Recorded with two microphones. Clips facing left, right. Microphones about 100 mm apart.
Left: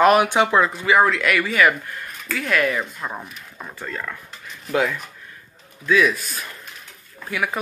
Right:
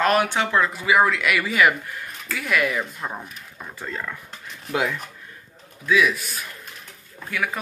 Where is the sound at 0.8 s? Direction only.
5° right (ahead or behind).